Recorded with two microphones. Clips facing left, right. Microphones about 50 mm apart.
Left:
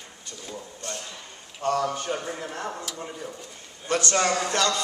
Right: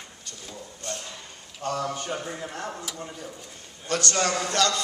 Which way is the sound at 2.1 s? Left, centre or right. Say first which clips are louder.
Left 2 dB; centre.